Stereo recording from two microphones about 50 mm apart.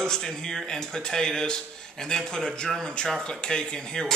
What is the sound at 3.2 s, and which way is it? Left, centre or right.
Speech, centre.